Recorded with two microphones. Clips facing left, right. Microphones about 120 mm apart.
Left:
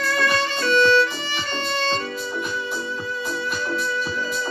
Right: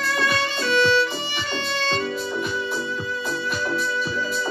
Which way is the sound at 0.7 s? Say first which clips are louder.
Left 2 dB; 50° left (ahead or behind).